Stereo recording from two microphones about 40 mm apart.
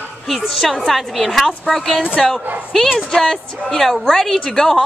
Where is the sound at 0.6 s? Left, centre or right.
Centre.